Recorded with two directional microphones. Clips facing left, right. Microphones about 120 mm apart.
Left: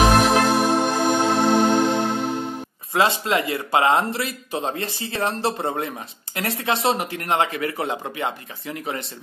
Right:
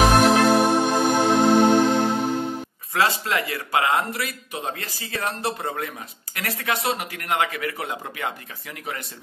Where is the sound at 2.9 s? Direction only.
20° left (ahead or behind).